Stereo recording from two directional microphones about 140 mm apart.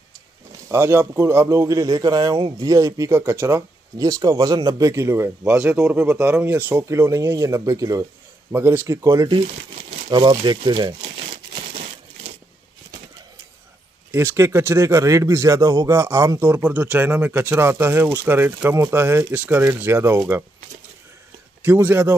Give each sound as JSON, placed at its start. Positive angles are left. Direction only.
{"t": 0.7, "sound": "a man's voice", "side_deg": -15}
{"t": 9.8, "sound": "crumpling", "side_deg": -35}
{"t": 10.4, "sound": "speech", "side_deg": -35}
{"t": 11.7, "sound": "crushing", "side_deg": -50}
{"t": 14.1, "sound": "speech", "side_deg": -20}
{"t": 21.6, "sound": "speech", "side_deg": -15}